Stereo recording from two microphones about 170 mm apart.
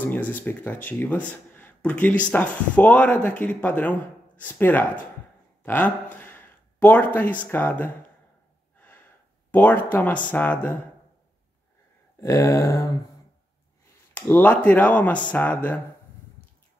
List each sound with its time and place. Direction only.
0.0 s speech: 10° left (ahead or behind)
5.6 s a sound: 10° left (ahead or behind)
7.2 s speech: 10° left (ahead or behind)
9.5 s speech: 10° left (ahead or behind)
12.2 s speech: 15° left (ahead or behind)
14.1 s speech: 10° left (ahead or behind)